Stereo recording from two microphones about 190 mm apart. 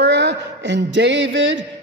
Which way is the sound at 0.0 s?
65° right (ahead or behind).